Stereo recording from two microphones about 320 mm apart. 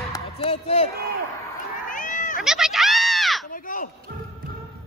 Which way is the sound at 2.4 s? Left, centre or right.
Centre.